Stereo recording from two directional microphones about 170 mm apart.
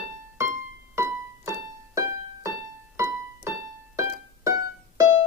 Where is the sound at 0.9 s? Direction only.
15° right (ahead or behind).